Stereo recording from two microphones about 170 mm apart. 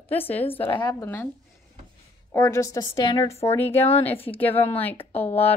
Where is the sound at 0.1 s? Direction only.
10° left (ahead or behind).